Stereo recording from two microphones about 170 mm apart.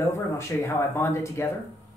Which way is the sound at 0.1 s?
15° left (ahead or behind).